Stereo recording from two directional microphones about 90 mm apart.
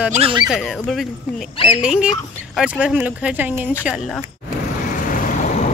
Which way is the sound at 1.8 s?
10° right (ahead or behind).